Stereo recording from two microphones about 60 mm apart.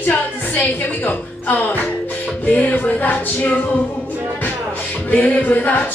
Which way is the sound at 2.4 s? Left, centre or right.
Left.